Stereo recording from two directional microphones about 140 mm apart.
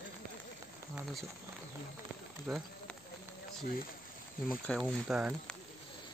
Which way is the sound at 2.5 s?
5° right (ahead or behind).